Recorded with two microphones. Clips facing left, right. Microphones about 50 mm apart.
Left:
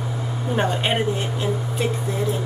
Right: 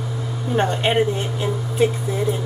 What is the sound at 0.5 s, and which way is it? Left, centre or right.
Speech, centre.